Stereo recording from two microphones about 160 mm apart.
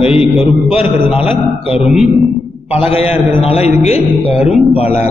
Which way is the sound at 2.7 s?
40° left (ahead or behind).